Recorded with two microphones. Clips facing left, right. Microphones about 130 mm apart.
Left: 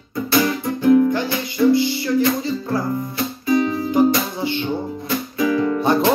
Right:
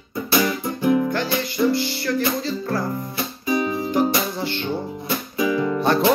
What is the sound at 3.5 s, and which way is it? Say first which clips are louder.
Music: left 4 dB; 15° right (ahead or behind).